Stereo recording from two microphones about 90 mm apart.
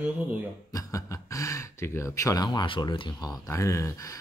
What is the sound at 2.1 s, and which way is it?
Speech, 35° left (ahead or behind).